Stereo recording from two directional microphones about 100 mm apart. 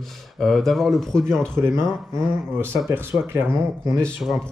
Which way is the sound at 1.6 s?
25° right (ahead or behind).